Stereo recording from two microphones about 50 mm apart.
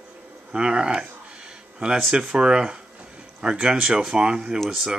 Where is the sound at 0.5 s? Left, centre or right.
Right.